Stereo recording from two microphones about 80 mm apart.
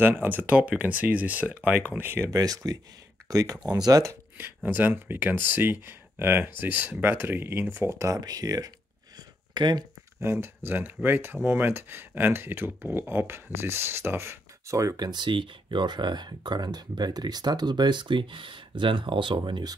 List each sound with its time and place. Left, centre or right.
0.0 s speech: right
2.2 s speech: right
4.1 s speech: right
8.2 s speech: right
9.5 s speech: right
10.2 s speech: right
15.0 s speech: right